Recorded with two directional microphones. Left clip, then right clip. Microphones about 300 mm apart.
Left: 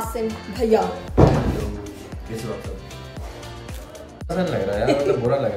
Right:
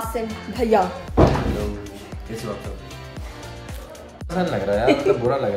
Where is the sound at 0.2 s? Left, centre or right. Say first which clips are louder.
Left 2 dB; centre.